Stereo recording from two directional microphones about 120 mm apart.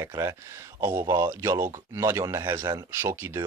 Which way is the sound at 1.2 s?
20° right (ahead or behind).